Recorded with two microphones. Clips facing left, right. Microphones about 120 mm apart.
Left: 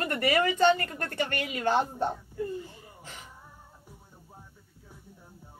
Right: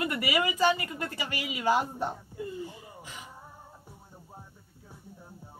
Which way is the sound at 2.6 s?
15° right (ahead or behind).